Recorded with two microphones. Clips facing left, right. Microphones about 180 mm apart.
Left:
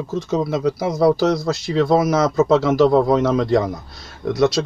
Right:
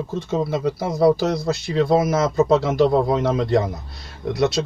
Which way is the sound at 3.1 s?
Centre (ahead or behind).